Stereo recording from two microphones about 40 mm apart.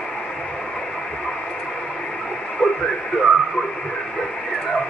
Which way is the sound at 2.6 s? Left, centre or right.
Left.